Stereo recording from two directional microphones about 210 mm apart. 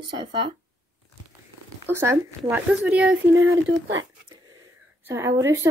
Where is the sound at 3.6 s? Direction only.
65° right (ahead or behind).